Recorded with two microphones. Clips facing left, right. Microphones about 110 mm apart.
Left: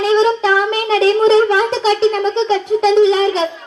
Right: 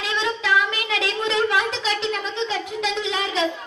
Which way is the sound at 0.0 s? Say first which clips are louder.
Left 13 dB; 30° left (ahead or behind).